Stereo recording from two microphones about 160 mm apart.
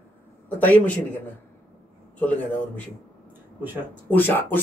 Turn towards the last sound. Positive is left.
turn(degrees=10)  # may be behind; listen again after turning